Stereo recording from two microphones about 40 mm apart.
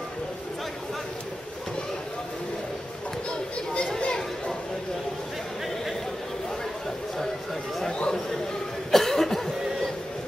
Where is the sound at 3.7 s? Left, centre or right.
Left.